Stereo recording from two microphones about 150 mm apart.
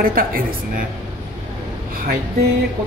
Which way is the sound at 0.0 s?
75° right (ahead or behind).